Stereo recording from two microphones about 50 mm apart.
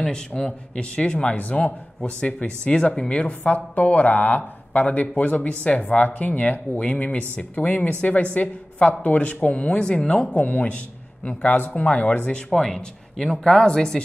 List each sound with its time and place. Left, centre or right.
0.0 s speech: centre